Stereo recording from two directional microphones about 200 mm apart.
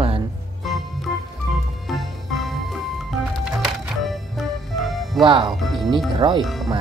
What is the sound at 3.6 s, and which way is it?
Music, centre (ahead or behind).